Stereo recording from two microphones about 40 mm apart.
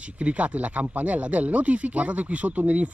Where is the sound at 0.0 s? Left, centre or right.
Right.